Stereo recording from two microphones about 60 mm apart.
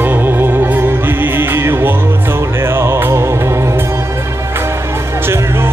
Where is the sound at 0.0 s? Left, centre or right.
Right.